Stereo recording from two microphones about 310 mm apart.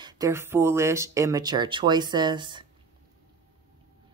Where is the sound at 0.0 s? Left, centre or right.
Centre.